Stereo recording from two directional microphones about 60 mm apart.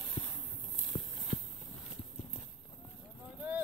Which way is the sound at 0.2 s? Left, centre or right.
Centre.